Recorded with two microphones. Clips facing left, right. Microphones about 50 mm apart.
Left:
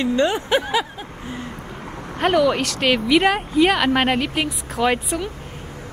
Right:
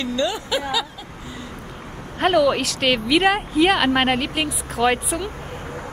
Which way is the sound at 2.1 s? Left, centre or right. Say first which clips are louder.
Even; centre.